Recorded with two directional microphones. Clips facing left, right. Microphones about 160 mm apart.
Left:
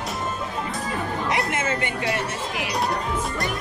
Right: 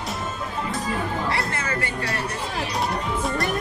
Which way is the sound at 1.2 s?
20° left (ahead or behind).